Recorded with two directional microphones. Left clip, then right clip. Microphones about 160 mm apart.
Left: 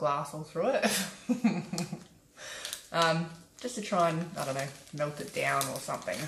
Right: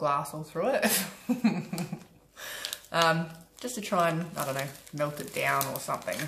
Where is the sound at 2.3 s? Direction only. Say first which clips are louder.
Right 3 dB; 25° right (ahead or behind).